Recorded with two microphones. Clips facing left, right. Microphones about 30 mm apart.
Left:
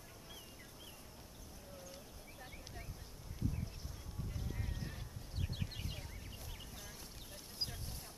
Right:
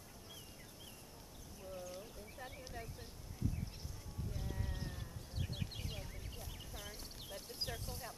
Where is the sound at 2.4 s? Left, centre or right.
Centre.